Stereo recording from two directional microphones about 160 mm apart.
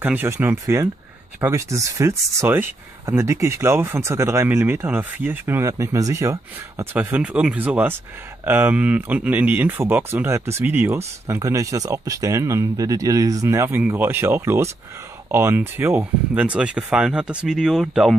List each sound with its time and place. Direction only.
0.0 s speech: 10° right (ahead or behind)